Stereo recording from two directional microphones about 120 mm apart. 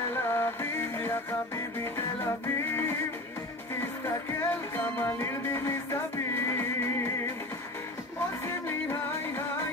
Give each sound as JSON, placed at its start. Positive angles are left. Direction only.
{"t": 0.1, "sound": "music", "side_deg": 20}
{"t": 4.0, "sound": "music", "side_deg": 20}
{"t": 8.5, "sound": "music", "side_deg": 20}